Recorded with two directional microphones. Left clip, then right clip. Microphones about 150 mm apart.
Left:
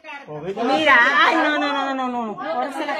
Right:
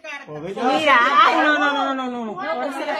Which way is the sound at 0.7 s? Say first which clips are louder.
Even; 15° left (ahead or behind).